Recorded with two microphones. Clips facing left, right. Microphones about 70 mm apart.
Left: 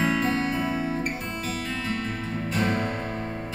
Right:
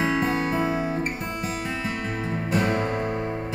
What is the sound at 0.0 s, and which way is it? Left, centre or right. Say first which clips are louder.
Music: right 1 dB; centre.